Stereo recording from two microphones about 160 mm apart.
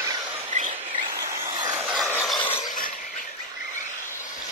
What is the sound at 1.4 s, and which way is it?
Vehicle, 30° right (ahead or behind).